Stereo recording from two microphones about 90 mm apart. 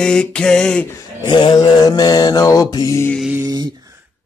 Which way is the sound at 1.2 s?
60° left (ahead or behind).